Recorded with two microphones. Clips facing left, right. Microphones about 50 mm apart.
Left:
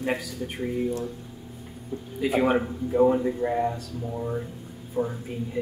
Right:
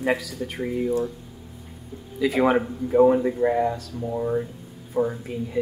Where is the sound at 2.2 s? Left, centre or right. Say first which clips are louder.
Right 2 dB; right.